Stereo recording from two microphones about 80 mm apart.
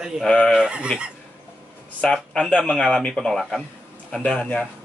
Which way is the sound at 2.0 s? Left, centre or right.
Centre.